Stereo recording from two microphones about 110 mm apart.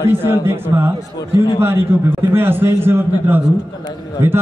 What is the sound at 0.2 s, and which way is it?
A man's voice, 20° right (ahead or behind).